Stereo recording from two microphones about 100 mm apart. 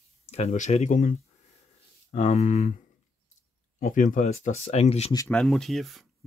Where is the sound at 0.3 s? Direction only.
90° left.